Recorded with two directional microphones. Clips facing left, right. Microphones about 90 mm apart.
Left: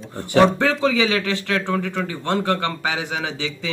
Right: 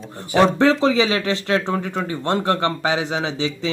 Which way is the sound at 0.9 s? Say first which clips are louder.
Right 2 dB; 35° right (ahead or behind).